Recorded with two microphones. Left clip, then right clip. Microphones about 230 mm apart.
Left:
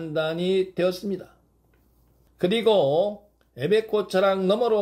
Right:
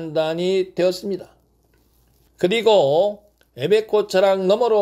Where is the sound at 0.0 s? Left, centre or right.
Centre.